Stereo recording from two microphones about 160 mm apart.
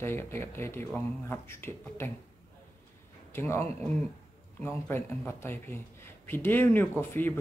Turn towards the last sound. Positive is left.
turn(degrees=15)  # may be behind; listen again after turning